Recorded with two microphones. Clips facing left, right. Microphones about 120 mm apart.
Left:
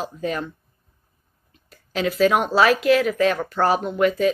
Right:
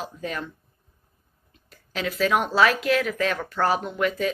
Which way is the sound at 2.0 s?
10° left (ahead or behind).